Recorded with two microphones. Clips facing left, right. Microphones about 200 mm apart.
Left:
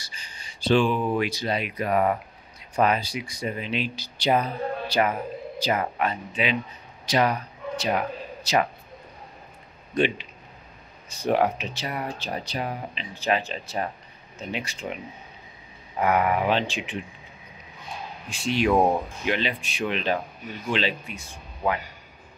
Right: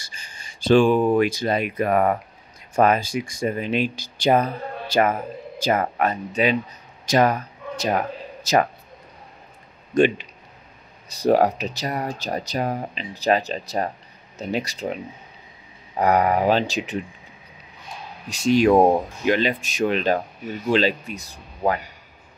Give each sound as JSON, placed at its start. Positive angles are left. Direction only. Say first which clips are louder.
{"t": 0.0, "sound": "speech", "louder": "right 1 dB", "side_deg": -50}
{"t": 9.9, "sound": "speech", "louder": "right 6 dB", "side_deg": -45}
{"t": 16.0, "sound": "speech", "louder": "right 4 dB", "side_deg": -40}
{"t": 18.3, "sound": "speech", "louder": "right 6 dB", "side_deg": -40}